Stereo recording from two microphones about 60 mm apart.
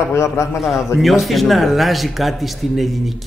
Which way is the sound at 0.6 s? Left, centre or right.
Centre.